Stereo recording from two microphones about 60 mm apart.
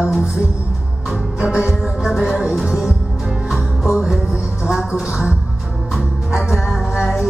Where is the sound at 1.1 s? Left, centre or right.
Centre.